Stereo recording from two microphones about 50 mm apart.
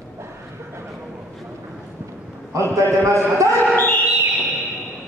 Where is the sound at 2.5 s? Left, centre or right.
Right.